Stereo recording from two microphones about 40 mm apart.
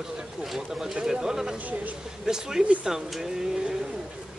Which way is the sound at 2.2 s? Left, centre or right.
Centre.